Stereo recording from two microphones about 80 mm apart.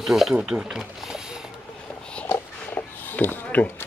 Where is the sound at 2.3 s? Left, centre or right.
Left.